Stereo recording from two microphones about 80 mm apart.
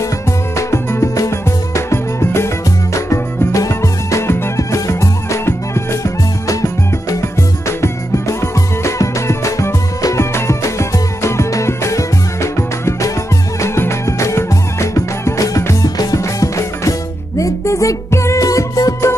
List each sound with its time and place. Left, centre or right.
0.6 s music: left